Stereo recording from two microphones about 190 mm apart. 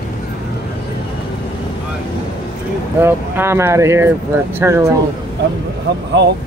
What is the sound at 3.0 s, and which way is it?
Speech, 10° right (ahead or behind).